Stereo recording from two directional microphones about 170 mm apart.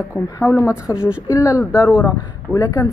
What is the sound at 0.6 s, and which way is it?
Speech, 5° right (ahead or behind).